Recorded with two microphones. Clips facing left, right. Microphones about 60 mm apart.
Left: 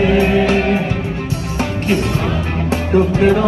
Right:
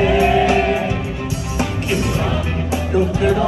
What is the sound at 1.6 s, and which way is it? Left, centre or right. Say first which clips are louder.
Music: left 3 dB; left.